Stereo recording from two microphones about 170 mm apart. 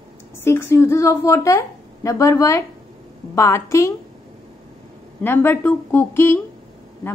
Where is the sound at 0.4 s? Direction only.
15° left (ahead or behind).